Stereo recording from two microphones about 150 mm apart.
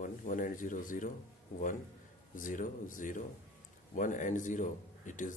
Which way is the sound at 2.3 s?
60° left (ahead or behind).